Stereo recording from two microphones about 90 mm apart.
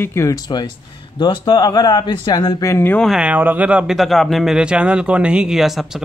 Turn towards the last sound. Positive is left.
turn(degrees=0)  # may be behind; listen again after turning